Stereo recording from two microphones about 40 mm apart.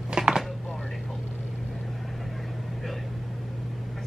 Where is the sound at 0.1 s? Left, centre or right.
Right.